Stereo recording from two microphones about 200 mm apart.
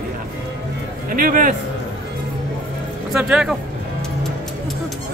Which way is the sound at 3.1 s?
5° right (ahead or behind).